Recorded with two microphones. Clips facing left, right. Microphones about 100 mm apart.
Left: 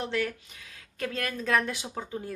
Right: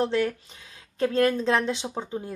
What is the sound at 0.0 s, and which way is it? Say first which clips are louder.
Speech: right 6 dB; 30° right (ahead or behind).